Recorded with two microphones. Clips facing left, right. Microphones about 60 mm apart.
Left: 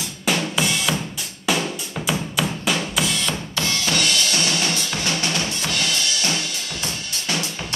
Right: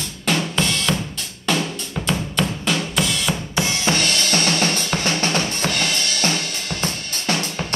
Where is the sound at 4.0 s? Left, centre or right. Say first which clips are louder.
Right 1 dB; right.